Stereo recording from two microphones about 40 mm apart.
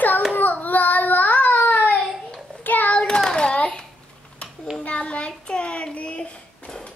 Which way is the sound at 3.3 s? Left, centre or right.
Left.